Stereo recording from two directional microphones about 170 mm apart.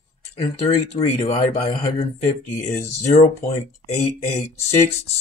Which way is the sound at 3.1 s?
40° left (ahead or behind).